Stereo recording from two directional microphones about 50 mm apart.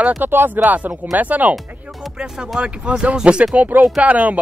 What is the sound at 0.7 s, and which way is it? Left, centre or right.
Speech, right.